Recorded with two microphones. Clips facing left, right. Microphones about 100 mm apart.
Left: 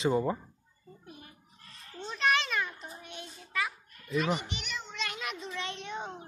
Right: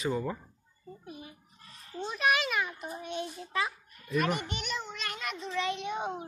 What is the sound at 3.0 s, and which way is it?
Child singing, 20° right (ahead or behind).